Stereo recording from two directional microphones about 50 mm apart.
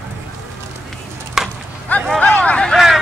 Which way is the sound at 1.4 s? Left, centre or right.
Centre.